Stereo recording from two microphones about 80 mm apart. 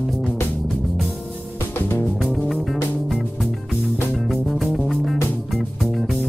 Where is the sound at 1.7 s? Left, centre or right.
Left.